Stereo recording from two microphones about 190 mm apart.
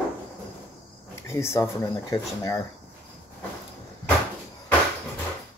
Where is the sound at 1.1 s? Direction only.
15° left (ahead or behind).